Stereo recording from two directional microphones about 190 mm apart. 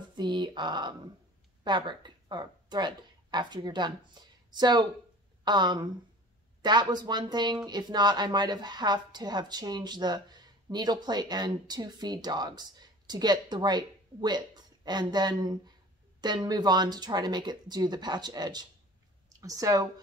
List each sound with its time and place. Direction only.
0.1 s speech: 25° right (ahead or behind)